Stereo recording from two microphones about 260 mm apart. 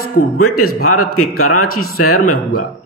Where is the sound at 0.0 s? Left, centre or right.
Left.